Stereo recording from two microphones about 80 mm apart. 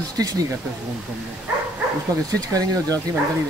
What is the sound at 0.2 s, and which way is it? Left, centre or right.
Speech, right.